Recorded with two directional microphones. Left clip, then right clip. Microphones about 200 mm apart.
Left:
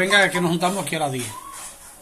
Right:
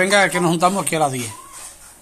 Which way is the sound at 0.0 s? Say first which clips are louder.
Right 2 dB; 30° right (ahead or behind).